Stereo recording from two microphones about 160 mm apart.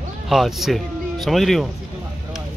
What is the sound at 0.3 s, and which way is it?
Speech, centre (ahead or behind).